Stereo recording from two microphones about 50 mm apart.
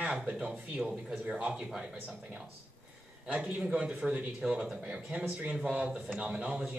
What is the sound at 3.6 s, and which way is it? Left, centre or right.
Speech, centre.